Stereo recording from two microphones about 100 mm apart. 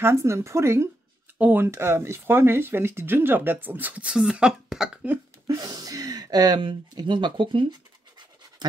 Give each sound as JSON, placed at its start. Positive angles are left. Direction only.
{"t": 0.0, "sound": "speech", "side_deg": -30}
{"t": 5.6, "sound": "speech", "side_deg": -40}